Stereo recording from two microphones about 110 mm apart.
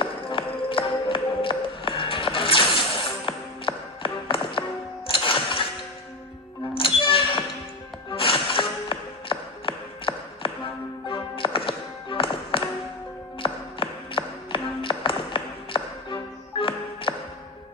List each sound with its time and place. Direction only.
0.0 s music: 50° left (ahead or behind)
6.7 s music: 55° left (ahead or behind)
13.4 s tap: 50° left (ahead or behind)